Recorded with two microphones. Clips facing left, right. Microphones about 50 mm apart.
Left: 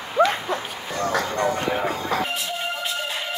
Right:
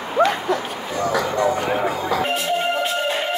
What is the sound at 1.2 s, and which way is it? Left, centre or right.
Music, right.